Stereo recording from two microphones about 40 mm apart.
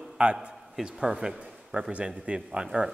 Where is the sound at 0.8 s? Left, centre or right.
Centre.